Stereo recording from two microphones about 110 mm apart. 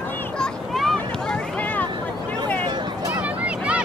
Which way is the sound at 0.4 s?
Centre (ahead or behind).